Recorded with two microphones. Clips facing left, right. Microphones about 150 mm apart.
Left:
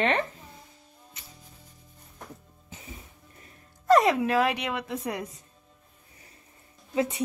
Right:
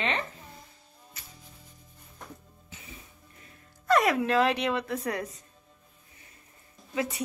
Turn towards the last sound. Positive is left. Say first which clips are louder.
# left 4 dB
turn(degrees=25)  # may be behind; listen again after turning